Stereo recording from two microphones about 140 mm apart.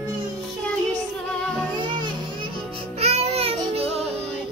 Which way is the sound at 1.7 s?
35° right (ahead or behind).